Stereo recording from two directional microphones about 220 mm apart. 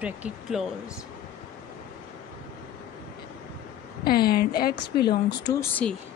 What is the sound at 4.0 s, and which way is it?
A woman's voice, 45° left (ahead or behind).